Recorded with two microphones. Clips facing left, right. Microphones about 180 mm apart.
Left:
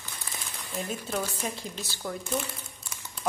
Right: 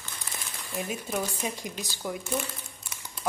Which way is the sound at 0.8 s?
10° right (ahead or behind).